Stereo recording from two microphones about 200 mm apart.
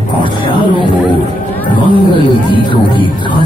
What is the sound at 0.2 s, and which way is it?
Speech, 25° left (ahead or behind).